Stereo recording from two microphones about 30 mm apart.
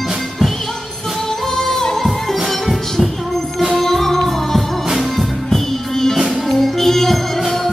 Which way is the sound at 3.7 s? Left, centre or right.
Centre.